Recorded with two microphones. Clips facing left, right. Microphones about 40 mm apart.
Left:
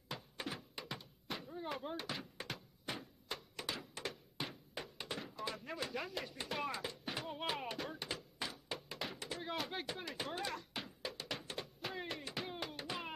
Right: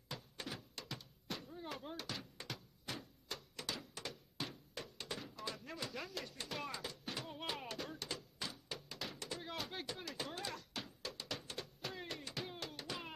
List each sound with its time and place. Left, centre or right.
0.1 s thunk: centre